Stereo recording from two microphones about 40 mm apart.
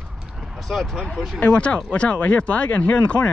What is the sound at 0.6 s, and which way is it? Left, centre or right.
Speech, centre.